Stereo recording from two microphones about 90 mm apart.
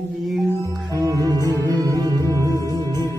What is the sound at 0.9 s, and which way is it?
Music, 40° right (ahead or behind).